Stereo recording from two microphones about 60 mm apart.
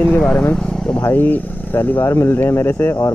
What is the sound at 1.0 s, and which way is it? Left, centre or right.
Speech, left.